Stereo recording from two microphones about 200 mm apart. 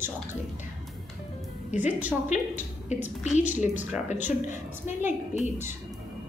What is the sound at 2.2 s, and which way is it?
Speech, 35° left (ahead or behind).